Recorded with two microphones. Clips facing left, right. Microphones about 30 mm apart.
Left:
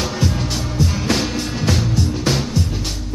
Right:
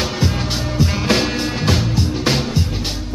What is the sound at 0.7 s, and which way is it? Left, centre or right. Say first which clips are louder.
Music: right 3 dB; right.